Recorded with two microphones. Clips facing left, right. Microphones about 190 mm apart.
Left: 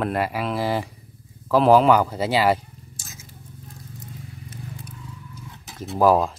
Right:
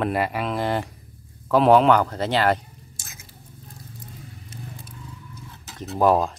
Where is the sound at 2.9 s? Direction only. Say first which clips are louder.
Left 5 dB; 60° right (ahead or behind).